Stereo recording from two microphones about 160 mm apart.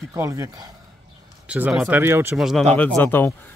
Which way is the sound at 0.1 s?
20° right (ahead or behind).